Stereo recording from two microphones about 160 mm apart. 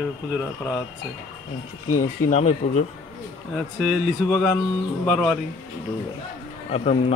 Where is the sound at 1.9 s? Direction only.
50° left (ahead or behind).